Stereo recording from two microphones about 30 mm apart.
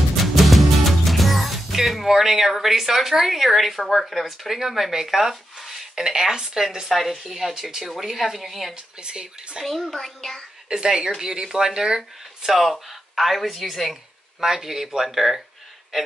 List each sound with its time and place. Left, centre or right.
0.2 s music: centre
2.0 s a woman's voice: centre
6.9 s a woman's voice: centre
8.7 s speech: right
9.9 s child singing: centre
10.7 s speech: right
12.4 s a woman's voice: centre
14.4 s speech: centre